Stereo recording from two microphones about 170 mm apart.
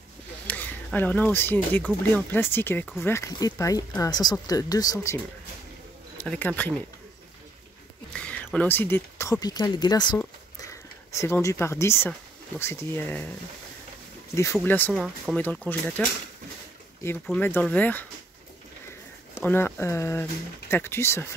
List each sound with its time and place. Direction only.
0.5 s speech: 10° left (ahead or behind)
6.1 s speech: 10° left (ahead or behind)
8.1 s speech: 5° left (ahead or behind); by 10.1 s 25° left (ahead or behind)
10.1 s a sound: 15° left (ahead or behind)
12.5 s speech: 15° left (ahead or behind)
14.3 s speech: 15° left (ahead or behind)
15.0 s speech: centre (ahead or behind)
15.4 s speech: 10° left (ahead or behind)
19.3 s speech: 15° left (ahead or behind)